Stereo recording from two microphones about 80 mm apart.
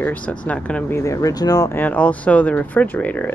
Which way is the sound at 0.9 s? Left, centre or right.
Left.